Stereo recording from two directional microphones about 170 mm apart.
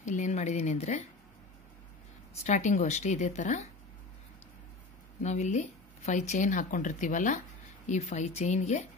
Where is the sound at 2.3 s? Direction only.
40° left (ahead or behind).